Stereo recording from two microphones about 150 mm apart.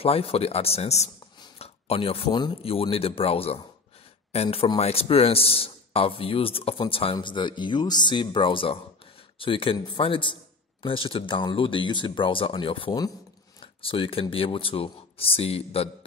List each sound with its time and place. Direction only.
0.0 s speech: 40° left (ahead or behind)